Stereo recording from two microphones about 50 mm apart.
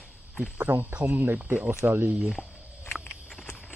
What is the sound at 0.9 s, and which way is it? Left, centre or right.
Speech, right.